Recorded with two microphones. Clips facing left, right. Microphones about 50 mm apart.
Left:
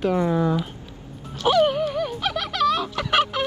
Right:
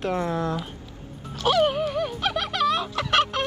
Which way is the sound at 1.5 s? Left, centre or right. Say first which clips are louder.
Left 2 dB; centre.